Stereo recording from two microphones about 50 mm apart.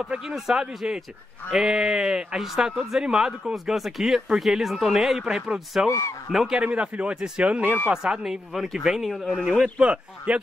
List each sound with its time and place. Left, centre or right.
0.2 s speech: centre
5.9 s speech: left
6.5 s speech: right; by 9.4 s centre
9.4 s speech: centre
9.8 s speech: right